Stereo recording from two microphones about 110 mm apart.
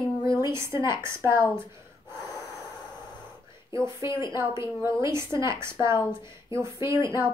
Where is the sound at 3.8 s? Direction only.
25° right (ahead or behind).